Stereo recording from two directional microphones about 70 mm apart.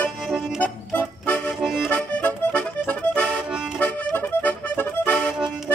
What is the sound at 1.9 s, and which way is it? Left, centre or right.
Accordion, centre.